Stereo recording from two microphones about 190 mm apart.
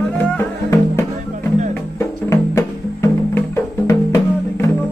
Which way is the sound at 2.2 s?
15° left (ahead or behind).